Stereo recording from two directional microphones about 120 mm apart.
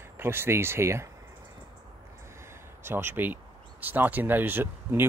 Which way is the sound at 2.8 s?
20° right (ahead or behind).